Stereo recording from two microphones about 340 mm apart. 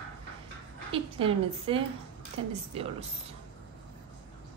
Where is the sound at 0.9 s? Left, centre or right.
Centre.